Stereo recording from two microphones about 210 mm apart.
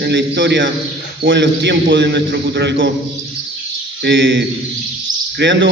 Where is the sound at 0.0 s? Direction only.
55° right (ahead or behind).